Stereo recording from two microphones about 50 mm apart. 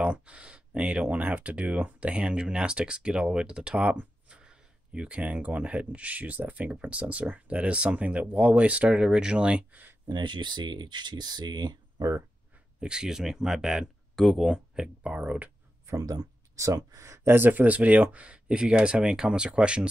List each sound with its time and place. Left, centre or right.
0.0 s speech: right
9.7 s speech: right
12.8 s speech: centre
14.1 s speech: centre
15.0 s speech: right
16.5 s speech: right
17.3 s speech: right